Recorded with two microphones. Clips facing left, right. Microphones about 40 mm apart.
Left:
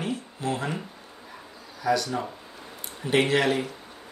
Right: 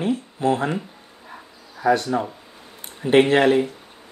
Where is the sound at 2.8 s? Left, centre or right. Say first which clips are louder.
Right 7 dB; right.